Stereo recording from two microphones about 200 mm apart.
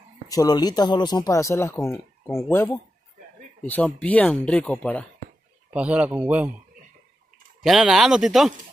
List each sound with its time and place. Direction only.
0.3 s speech: 20° left (ahead or behind)
3.6 s speech: 10° left (ahead or behind)
5.7 s a man's voice: 5° right (ahead or behind)
7.6 s speech: centre (ahead or behind)